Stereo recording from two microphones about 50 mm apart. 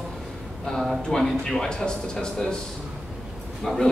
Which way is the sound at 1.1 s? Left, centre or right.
Centre.